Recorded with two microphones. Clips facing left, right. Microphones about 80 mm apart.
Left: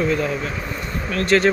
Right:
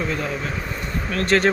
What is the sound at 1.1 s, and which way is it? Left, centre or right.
Speech, right.